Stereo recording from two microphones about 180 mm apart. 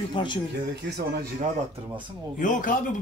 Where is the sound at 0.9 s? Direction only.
65° right (ahead or behind).